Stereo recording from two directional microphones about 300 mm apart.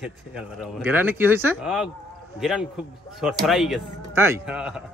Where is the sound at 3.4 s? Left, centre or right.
Centre.